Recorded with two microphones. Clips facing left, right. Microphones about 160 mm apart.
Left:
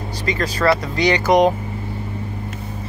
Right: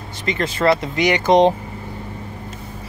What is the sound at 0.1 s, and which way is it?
Speech, 25° right (ahead or behind).